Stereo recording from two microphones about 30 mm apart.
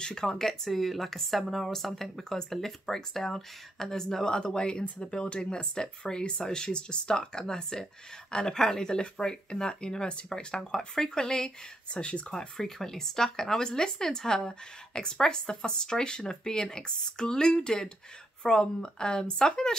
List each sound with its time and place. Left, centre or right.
0.0 s speech: left
0.7 s speech: centre; by 10.4 s left
10.5 s speech: centre; by 12.4 s left
12.4 s speech: centre